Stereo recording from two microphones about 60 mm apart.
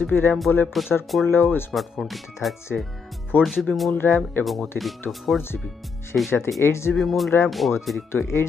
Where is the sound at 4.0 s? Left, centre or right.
Left.